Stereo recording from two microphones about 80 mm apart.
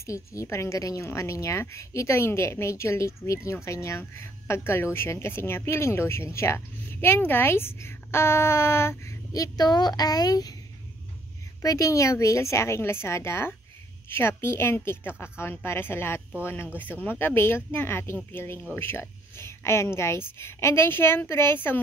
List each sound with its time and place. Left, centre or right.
0.0 s speech: left
9.3 s a woman's voice: left
11.6 s speech: left